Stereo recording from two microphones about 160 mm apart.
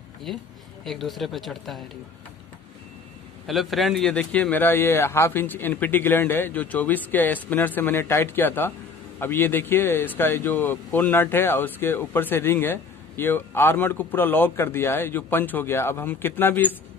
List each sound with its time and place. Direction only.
0.8 s speech: centre (ahead or behind)
3.4 s speech: centre (ahead or behind)